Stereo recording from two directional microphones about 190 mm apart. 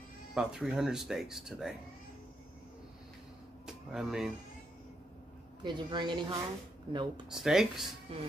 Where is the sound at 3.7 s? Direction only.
5° right (ahead or behind).